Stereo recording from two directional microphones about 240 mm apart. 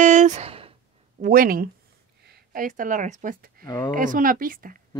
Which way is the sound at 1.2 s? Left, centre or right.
Right.